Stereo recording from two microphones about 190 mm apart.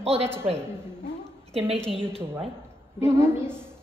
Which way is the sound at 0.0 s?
30° right (ahead or behind).